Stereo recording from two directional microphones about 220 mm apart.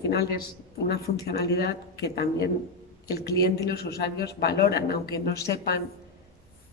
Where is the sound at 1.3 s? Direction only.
45° left (ahead or behind).